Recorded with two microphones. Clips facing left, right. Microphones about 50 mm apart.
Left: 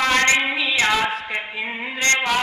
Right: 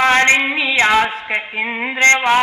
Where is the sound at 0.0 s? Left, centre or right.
Right.